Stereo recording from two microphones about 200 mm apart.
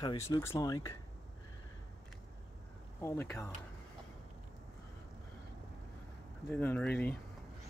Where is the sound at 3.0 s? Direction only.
15° left (ahead or behind).